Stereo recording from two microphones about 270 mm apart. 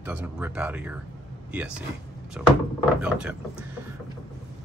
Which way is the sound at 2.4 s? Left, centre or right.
Centre.